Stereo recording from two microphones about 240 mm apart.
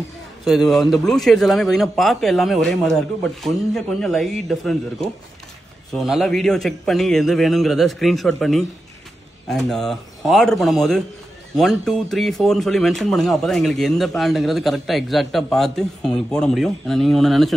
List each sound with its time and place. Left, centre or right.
0.5 s speech: centre